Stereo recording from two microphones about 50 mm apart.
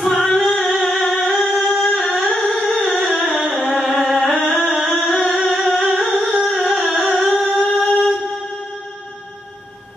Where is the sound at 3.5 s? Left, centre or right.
Centre.